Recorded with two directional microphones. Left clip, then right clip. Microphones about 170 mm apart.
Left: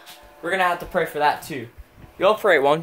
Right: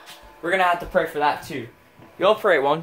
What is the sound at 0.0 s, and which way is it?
Music, 20° left (ahead or behind).